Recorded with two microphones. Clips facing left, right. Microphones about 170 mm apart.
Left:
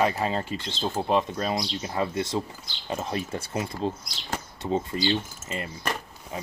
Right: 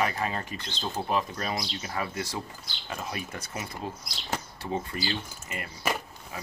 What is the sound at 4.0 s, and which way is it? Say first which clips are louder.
Speech: even; centre (ahead or behind).